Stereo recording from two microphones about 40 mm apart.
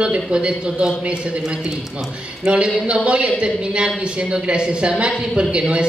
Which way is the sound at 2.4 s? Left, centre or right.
Right.